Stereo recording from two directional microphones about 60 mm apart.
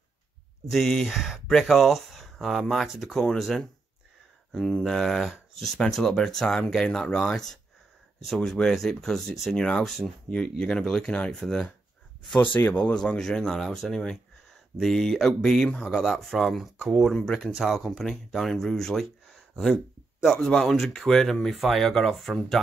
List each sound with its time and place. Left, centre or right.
0.7 s speech: centre
1.1 s speech: centre
12.4 s speech: left
12.7 s speech: left
13.2 s speech: centre
17.2 s speech: centre
17.6 s speech: centre